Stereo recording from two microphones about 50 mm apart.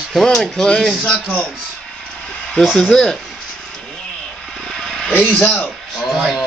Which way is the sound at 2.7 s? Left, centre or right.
Centre.